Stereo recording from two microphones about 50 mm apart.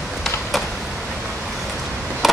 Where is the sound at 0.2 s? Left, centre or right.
Centre.